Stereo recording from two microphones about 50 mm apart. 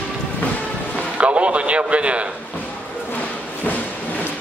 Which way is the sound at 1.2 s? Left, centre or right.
Right.